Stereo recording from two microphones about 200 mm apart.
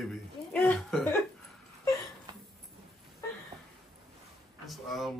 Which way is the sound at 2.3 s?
20° right (ahead or behind).